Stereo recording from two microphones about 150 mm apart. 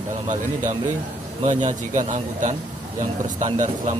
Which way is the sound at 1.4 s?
55° right (ahead or behind).